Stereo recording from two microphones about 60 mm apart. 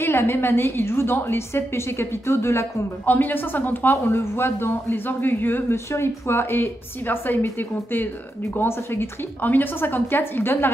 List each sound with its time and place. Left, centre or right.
0.0 s a woman's voice: left
3.1 s a woman's voice: left
5.9 s a woman's voice: left